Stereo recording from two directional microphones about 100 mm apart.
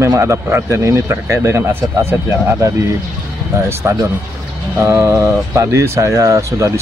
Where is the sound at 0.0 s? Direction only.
30° right (ahead or behind).